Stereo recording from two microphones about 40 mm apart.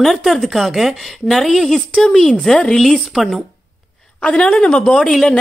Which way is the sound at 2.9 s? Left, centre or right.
Centre.